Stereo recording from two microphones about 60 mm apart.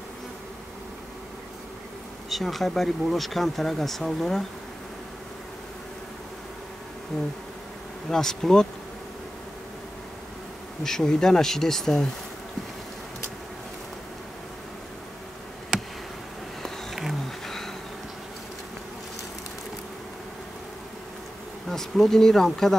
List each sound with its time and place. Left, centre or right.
2.2 s speech: centre
8.1 s speech: centre
10.8 s speech: centre
15.7 s insect: centre
16.6 s a sound: centre
21.6 s speech: centre